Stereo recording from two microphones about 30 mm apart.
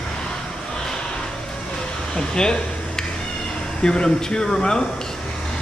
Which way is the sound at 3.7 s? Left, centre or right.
Left.